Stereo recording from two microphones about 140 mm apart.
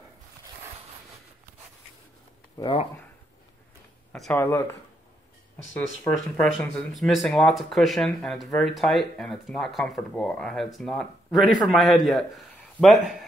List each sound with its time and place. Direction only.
2.6 s speech: 20° left (ahead or behind)
4.1 s speech: 10° left (ahead or behind)
5.7 s speech: 15° left (ahead or behind)
6.4 s speech: 5° left (ahead or behind)